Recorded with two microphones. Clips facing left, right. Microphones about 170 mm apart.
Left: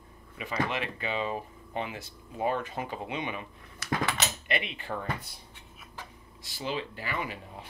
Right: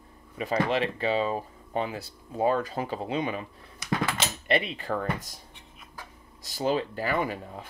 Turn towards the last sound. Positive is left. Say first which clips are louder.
# right 7 dB
turn(degrees=-45)  # may be behind; listen again after turning